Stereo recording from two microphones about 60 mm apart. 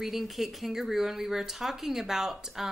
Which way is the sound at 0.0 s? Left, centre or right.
Centre.